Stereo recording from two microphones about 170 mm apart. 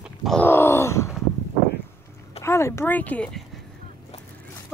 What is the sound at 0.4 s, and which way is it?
Groan, 15° left (ahead or behind).